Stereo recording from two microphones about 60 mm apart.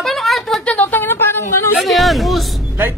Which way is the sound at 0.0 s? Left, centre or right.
Centre.